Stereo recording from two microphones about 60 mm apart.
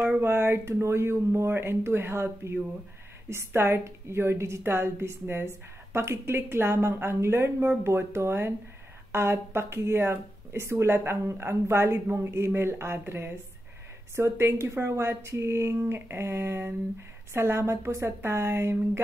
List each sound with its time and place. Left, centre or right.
0.2 s speech: right